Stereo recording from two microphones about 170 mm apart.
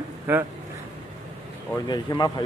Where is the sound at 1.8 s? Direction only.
25° left (ahead or behind).